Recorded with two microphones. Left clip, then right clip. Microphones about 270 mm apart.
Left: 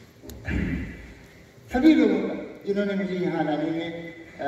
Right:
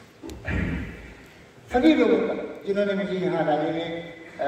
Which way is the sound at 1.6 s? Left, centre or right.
Right.